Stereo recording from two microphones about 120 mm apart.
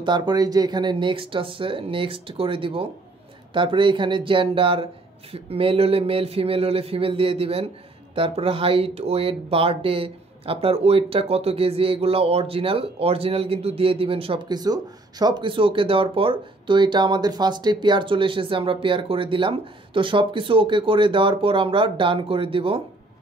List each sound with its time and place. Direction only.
0.0 s speech: 35° right (ahead or behind)
14.5 s speech: 35° right (ahead or behind); by 22.8 s 50° right (ahead or behind)